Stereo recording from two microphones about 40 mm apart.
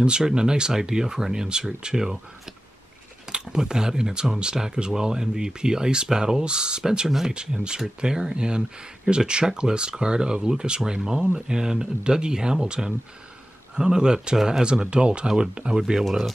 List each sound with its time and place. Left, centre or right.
0.0 s speech: right
7.3 s speech: right
14.3 s speech: centre
14.6 s speech: right
15.2 s speech: centre